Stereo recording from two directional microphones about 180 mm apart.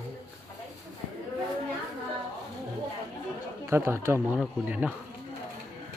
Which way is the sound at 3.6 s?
15° right (ahead or behind).